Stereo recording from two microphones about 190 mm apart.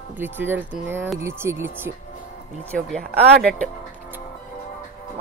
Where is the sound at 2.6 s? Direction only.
5° left (ahead or behind).